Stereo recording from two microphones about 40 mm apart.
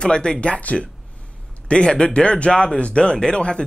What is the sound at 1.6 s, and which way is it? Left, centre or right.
Speech, left.